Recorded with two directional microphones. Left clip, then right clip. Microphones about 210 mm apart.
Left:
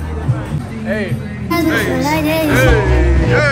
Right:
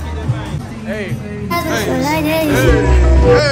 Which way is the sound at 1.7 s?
20° right (ahead or behind).